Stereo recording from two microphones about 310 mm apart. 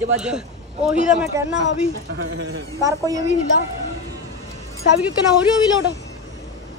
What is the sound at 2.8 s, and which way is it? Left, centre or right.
Speech, centre.